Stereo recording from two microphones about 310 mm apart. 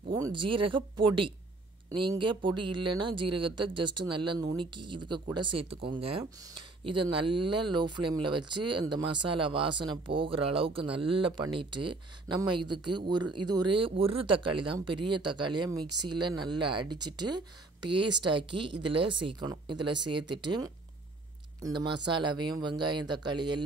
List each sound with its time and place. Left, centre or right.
0.1 s speech: centre